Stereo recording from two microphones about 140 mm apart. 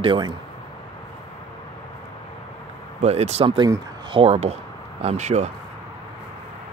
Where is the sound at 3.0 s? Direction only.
50° right (ahead or behind).